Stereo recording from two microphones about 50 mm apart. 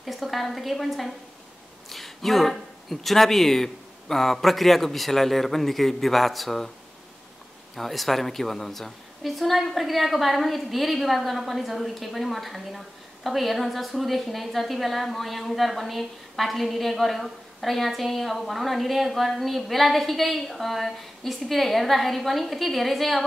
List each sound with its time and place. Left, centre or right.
0.0 s a woman's voice: centre
7.7 s a woman's voice: centre